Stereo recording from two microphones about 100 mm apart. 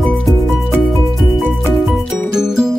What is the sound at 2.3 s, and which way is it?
Music, 5° right (ahead or behind).